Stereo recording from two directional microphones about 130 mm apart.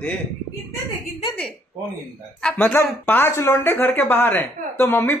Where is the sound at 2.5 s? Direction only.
15° left (ahead or behind).